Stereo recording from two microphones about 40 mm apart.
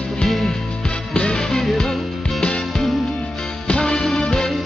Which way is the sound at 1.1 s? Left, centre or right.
Left.